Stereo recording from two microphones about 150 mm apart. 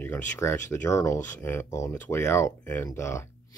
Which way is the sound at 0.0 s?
15° left (ahead or behind).